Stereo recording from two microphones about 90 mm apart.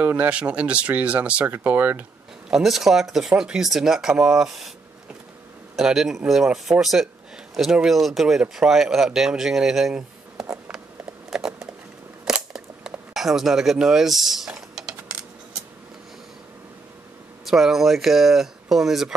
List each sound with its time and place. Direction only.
0.0 s speech: 20° right (ahead or behind)
2.5 s speech: 5° right (ahead or behind)
5.8 s speech: 5° right (ahead or behind)
11.2 s a sound: 5° right (ahead or behind)
12.3 s camera: 5° right (ahead or behind)
14.5 s typing: 10° right (ahead or behind)
17.5 s speech: 5° right (ahead or behind)